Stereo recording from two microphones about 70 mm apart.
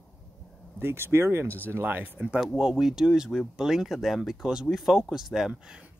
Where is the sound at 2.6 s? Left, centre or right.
Centre.